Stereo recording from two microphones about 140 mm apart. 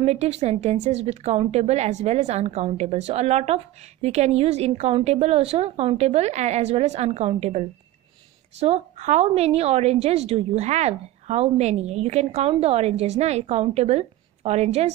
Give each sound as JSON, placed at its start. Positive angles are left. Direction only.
{"t": 0.0, "sound": "a woman's voice", "side_deg": -50}